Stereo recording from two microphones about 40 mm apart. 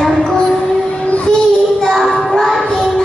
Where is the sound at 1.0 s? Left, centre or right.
Left.